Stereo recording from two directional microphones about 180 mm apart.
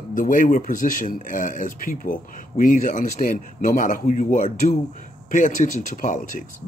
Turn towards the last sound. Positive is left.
turn(degrees=45)  # may be behind; listen again after turning